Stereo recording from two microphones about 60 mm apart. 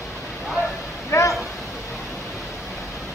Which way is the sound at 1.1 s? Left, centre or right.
Left.